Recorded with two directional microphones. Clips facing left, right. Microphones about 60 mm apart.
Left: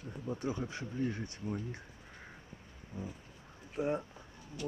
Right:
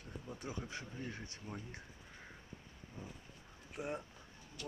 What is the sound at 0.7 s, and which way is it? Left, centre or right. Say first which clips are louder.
Speech: left 9 dB; centre.